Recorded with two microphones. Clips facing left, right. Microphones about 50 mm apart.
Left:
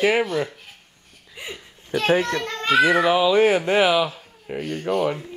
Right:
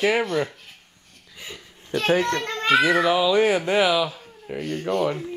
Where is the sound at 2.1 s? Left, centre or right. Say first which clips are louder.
Left 1 dB; centre.